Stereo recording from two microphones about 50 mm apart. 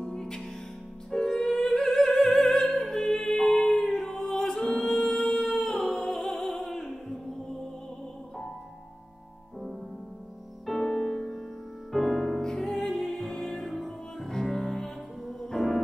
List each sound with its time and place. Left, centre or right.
0.0 s music: centre
2.1 s opera: centre
3.0 s music: centre
10.8 s music: centre
11.9 s music: centre
12.4 s music: centre
12.6 s music: centre